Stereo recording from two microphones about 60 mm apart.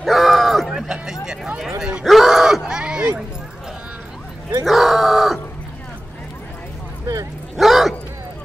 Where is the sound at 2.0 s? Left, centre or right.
Centre.